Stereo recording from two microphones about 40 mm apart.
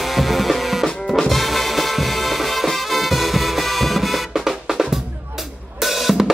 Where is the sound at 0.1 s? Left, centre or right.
Centre.